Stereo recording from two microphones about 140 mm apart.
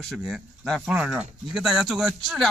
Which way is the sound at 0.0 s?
Centre (ahead or behind).